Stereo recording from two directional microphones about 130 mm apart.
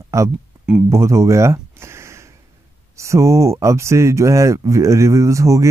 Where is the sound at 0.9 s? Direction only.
20° right (ahead or behind).